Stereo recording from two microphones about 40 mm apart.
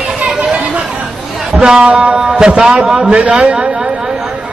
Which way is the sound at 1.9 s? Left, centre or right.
Right.